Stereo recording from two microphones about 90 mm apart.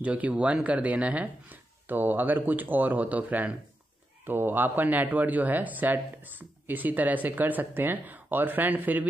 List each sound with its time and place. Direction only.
0.0 s speech: 15° right (ahead or behind)